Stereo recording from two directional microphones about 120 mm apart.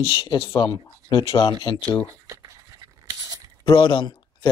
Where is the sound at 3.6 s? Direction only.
45° left (ahead or behind).